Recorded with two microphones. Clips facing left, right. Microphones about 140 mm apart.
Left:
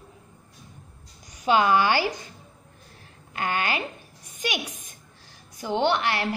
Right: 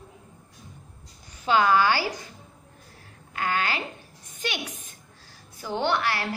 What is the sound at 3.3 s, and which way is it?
Speech, 20° left (ahead or behind).